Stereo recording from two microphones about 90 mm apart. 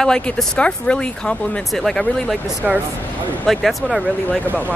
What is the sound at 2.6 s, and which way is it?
A woman's voice, 5° right (ahead or behind).